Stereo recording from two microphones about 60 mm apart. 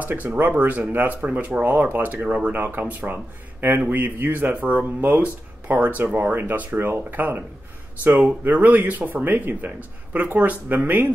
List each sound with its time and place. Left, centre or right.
0.0 s a man's voice: right
2.5 s a man's voice: right
8.5 s a man's voice: right